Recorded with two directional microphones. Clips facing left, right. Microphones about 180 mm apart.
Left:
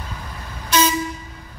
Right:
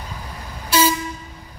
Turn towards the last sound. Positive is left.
turn(degrees=-10)  # may be behind; listen again after turning